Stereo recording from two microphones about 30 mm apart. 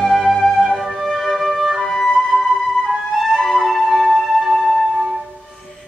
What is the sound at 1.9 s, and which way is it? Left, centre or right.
Music, left.